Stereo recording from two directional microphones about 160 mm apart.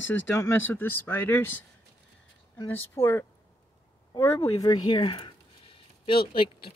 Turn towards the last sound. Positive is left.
turn(degrees=30)  # may be behind; listen again after turning